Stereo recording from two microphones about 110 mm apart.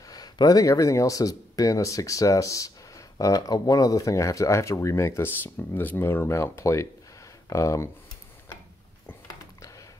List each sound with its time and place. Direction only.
0.1 s speech: 35° left (ahead or behind)